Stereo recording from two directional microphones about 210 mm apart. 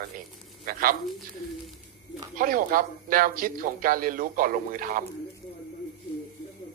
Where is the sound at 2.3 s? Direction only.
40° right (ahead or behind).